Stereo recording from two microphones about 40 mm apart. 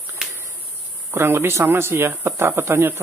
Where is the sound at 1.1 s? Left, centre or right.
Right.